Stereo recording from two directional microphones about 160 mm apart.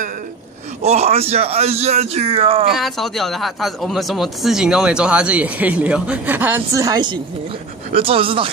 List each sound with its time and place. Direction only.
0.8 s speech: 40° right (ahead or behind)
2.7 s speech: centre (ahead or behind); by 8.5 s 35° right (ahead or behind)